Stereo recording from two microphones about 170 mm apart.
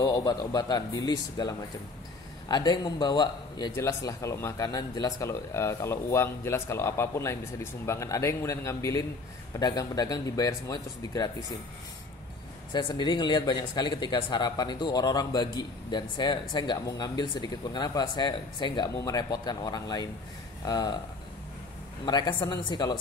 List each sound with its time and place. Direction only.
0.0 s a man's voice: 20° left (ahead or behind)
12.7 s speech: 25° left (ahead or behind)
22.0 s speech: 25° left (ahead or behind)